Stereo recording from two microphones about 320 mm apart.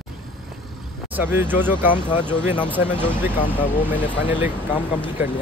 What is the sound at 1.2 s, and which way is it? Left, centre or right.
Speech, centre.